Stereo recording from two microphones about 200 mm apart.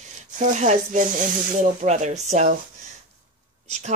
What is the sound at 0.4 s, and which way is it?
Speech, 35° right (ahead or behind).